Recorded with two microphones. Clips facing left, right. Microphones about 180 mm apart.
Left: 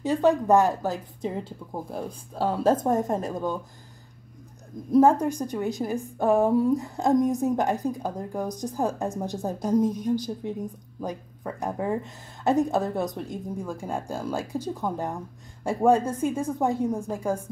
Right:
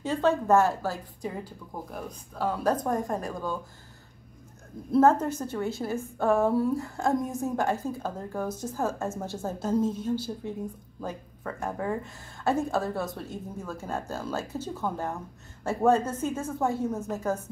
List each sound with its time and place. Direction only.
0.0 s a woman's voice: 15° left (ahead or behind)
4.9 s a woman's voice: 10° left (ahead or behind)